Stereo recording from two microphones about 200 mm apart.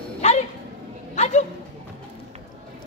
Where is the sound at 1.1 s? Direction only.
35° left (ahead or behind).